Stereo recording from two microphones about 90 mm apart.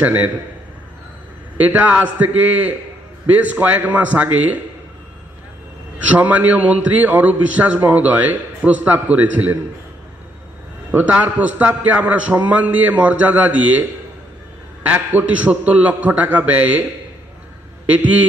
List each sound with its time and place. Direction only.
0.0 s a man's voice: 20° right (ahead or behind)
1.6 s a man's voice: 20° right (ahead or behind)
6.1 s a man's voice: 20° right (ahead or behind)
10.9 s a man's voice: 20° right (ahead or behind)
17.9 s a man's voice: 15° right (ahead or behind)